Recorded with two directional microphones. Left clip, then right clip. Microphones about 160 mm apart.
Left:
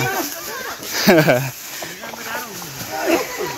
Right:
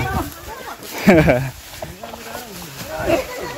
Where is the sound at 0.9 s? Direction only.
55° right (ahead or behind).